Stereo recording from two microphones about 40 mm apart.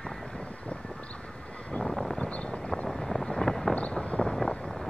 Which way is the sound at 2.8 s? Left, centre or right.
Centre.